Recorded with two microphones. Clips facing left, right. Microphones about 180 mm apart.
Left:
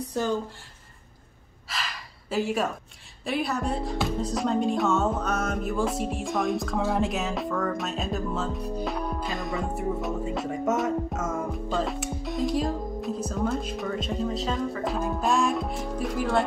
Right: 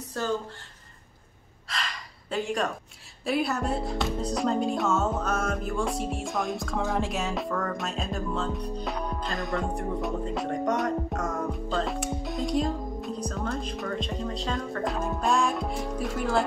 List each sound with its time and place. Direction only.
0.2 s speech: 15° left (ahead or behind)
1.7 s gasp: 5° left (ahead or behind)
3.3 s speech: centre (ahead or behind)